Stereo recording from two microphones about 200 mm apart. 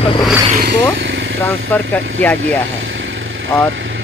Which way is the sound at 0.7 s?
65° right (ahead or behind).